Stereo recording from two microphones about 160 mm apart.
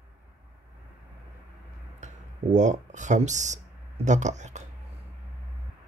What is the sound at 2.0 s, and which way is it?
Speech, 50° right (ahead or behind).